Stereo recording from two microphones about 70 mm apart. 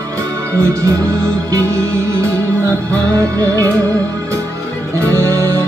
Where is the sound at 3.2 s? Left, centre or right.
Right.